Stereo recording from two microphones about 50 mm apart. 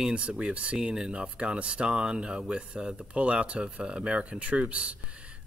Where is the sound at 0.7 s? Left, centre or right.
Centre.